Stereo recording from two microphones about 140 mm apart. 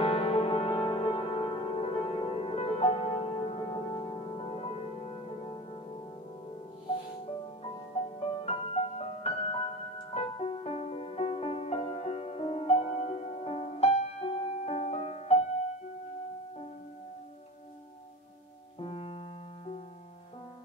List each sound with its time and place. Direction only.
0.0 s music: 45° left (ahead or behind)
8.2 s music: 45° left (ahead or behind)
18.8 s music: 45° left (ahead or behind)